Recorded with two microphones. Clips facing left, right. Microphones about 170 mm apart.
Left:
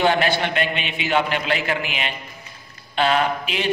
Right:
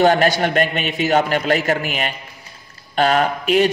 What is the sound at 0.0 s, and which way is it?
A man's voice, 45° right (ahead or behind).